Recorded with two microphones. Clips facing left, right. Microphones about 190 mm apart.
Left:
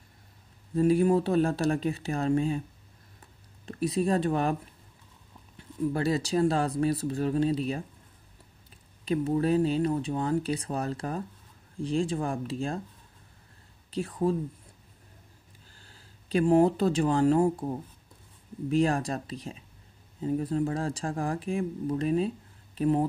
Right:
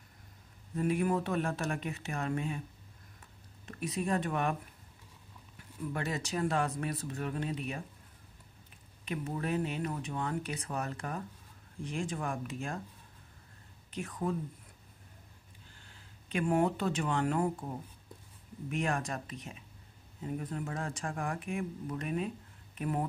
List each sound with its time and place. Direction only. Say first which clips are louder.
0.7 s speech: left 8 dB; 30° left (ahead or behind)
3.6 s speech: left 8 dB; 35° left (ahead or behind)
5.6 s speech: left 9 dB; 35° left (ahead or behind)
9.0 s speech: left 10 dB; 30° left (ahead or behind)
13.8 s speech: left 8 dB; 30° left (ahead or behind)
15.8 s speech: left 2 dB; 35° left (ahead or behind)